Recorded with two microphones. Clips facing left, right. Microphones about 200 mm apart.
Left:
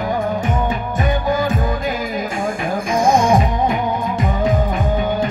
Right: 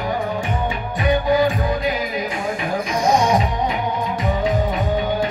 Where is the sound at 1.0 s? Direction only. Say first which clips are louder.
Right 3 dB; 45° left (ahead or behind).